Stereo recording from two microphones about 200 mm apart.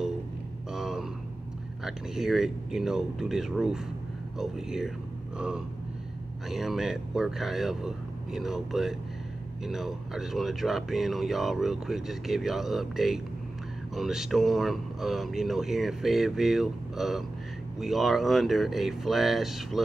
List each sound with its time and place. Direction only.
0.7 s a sound: centre (ahead or behind)
1.9 s speech: centre (ahead or behind)
6.5 s speech: centre (ahead or behind)